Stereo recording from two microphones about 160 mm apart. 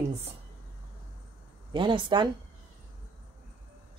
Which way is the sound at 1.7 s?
30° right (ahead or behind).